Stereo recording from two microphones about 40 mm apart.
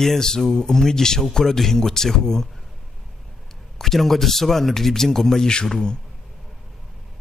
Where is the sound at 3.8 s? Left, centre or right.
Centre.